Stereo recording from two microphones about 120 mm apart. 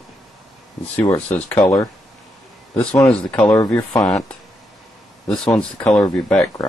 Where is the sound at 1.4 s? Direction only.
15° left (ahead or behind).